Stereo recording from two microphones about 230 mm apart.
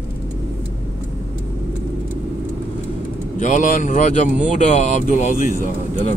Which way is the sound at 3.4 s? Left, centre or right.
Left.